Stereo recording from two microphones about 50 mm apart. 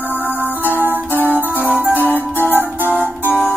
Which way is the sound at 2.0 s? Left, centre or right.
Left.